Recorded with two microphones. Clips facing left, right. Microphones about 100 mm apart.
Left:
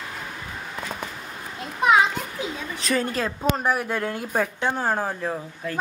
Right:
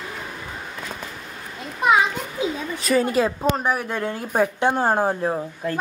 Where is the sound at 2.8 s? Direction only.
5° right (ahead or behind).